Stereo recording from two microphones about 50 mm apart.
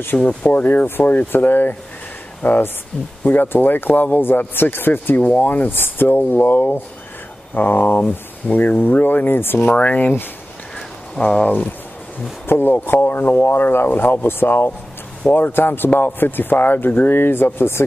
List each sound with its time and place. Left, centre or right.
0.2 s speech: left
5.2 s speech: left
9.8 s speech: left
11.4 s speech: left
12.4 s speech: left